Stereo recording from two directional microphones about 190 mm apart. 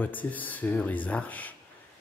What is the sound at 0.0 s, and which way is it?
Speech, 10° left (ahead or behind).